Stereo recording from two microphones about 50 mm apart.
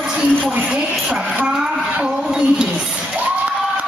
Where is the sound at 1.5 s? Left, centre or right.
Centre.